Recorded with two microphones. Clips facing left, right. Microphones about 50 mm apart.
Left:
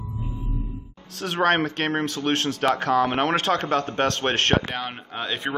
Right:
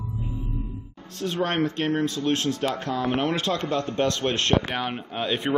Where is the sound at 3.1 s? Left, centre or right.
Left.